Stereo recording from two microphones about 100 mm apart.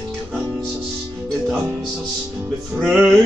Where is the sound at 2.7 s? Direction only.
Centre (ahead or behind).